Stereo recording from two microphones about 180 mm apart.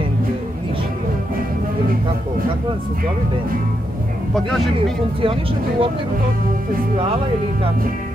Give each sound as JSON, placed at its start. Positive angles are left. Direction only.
{"t": 5.2, "sound": "speech", "side_deg": -30}